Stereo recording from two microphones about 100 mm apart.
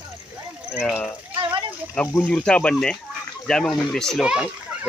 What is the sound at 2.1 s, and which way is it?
Speech, 15° left (ahead or behind).